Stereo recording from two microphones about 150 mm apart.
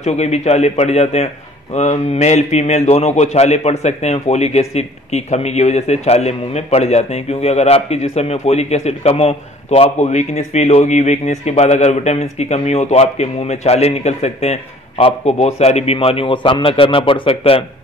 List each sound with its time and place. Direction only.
0.0 s a man's voice: 50° left (ahead or behind)